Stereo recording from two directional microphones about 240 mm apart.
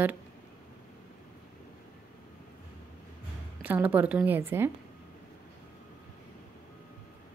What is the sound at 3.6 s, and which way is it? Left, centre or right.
A woman's voice, centre.